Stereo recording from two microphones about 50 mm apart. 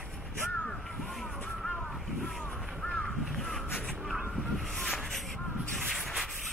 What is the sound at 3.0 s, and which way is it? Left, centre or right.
Crow, centre.